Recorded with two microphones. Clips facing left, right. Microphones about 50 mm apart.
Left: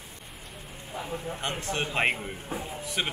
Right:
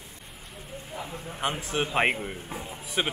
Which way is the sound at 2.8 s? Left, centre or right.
Centre.